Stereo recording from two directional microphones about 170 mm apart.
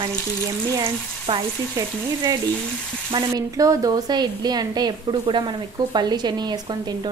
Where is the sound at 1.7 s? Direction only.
20° right (ahead or behind).